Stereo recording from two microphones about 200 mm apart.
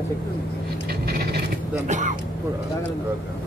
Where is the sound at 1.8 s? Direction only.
35° right (ahead or behind).